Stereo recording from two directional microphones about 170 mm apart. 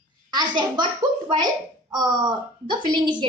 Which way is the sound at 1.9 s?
25° right (ahead or behind).